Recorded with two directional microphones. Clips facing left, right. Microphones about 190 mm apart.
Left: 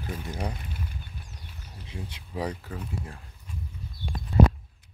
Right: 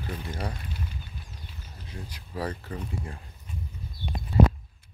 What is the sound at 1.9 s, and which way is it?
Speech, 25° left (ahead or behind).